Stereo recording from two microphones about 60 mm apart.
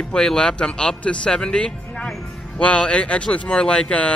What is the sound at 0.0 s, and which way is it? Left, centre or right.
Speech, centre.